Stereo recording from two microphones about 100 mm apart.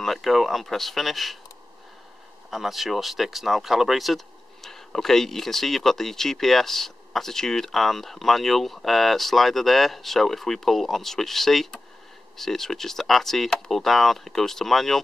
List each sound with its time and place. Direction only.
0.0 s speech: centre (ahead or behind)
2.5 s speech: centre (ahead or behind)